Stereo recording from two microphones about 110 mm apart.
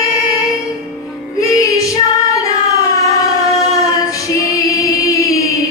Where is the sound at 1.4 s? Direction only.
30° left (ahead or behind).